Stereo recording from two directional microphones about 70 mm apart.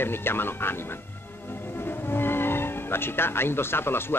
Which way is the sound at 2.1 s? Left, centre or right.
Left.